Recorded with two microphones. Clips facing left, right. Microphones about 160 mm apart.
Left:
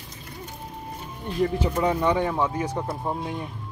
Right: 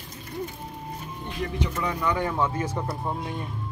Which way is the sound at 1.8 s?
30° left (ahead or behind).